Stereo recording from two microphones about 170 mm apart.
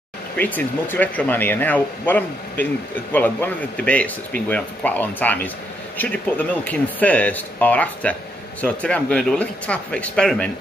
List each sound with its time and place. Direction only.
0.4 s speech: 10° left (ahead or behind)